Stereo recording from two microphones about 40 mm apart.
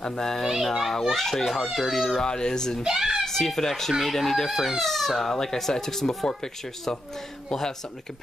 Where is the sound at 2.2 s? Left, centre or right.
Centre.